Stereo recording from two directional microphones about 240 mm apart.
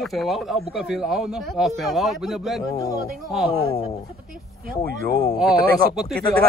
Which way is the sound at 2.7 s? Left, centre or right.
Centre.